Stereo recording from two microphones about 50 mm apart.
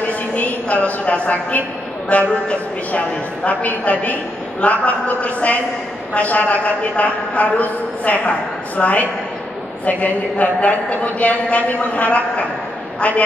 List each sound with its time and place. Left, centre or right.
0.3 s a sound: left
2.1 s a woman's voice: left
3.4 s a man's voice: left